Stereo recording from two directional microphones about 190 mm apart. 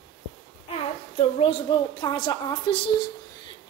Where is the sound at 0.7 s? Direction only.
30° left (ahead or behind).